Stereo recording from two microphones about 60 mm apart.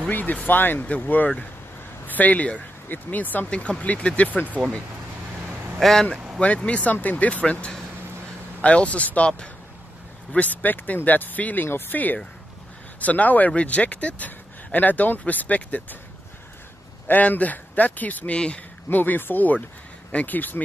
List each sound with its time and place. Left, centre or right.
0.1 s speech: left
3.4 s speech: centre
5.8 s speech: centre
6.4 s speech: left
10.3 s speech: left
17.1 s speech: left
18.9 s speech: left